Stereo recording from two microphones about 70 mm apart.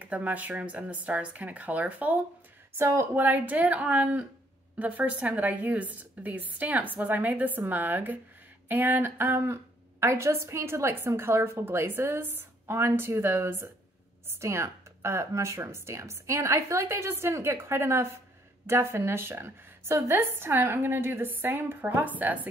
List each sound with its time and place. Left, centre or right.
0.0 s a woman's voice: right
2.8 s a woman's voice: right
3.2 s a woman's voice: right